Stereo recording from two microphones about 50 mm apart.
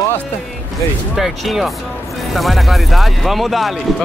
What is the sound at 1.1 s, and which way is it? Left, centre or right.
Speech, centre.